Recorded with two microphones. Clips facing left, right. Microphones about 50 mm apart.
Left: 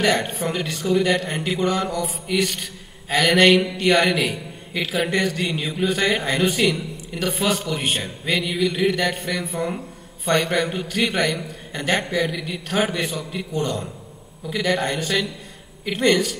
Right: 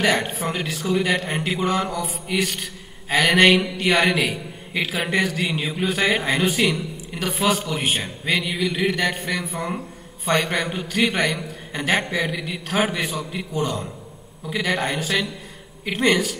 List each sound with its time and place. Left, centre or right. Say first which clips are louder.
0.0 s a man's voice: even; centre